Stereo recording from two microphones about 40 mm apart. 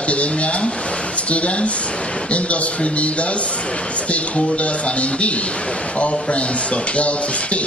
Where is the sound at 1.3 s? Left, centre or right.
Left.